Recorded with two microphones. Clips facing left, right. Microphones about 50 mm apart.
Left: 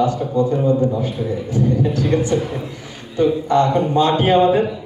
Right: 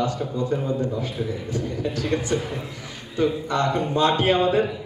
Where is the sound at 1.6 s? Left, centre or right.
Centre.